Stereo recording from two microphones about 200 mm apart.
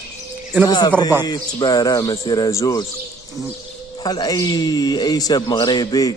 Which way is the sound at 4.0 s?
20° left (ahead or behind).